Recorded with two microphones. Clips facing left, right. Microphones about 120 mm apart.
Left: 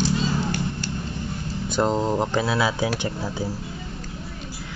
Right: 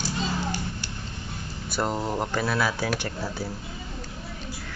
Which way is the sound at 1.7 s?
25° left (ahead or behind).